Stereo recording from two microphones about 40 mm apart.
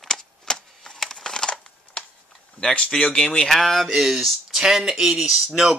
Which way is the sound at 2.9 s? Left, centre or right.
Left.